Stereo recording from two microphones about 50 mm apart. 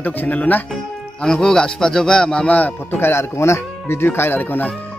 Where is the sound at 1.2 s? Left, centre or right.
Centre.